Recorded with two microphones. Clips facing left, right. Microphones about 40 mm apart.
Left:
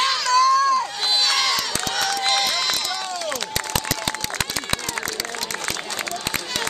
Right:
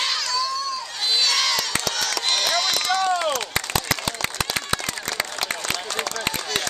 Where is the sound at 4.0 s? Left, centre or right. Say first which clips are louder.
Left 1 dB; left.